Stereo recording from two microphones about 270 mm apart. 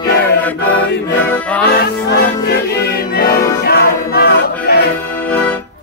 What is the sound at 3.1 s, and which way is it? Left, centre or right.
Music, left.